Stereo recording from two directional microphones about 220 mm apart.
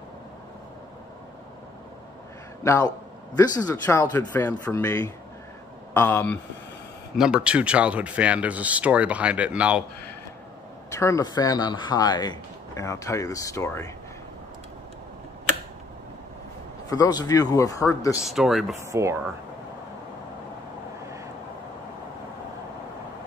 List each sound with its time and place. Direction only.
2.6 s speech: 15° left (ahead or behind)
7.2 s speech: 5° right (ahead or behind)
10.9 s speech: 15° left (ahead or behind)
16.9 s speech: 15° left (ahead or behind)
18.1 s speech: centre (ahead or behind)
18.8 s speech: 15° right (ahead or behind)